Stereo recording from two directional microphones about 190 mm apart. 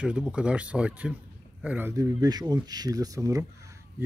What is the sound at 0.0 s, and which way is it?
Speech, 5° right (ahead or behind).